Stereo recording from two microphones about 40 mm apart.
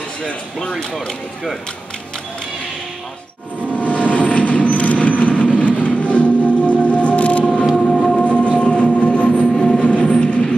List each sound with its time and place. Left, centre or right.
0.2 s speech: left
3.7 s train: left
7.7 s music: centre
8.2 s train: left
9.5 s train: centre
9.8 s train: left